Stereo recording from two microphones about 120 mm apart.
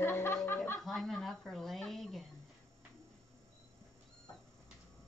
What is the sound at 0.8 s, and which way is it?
Speech, 5° left (ahead or behind).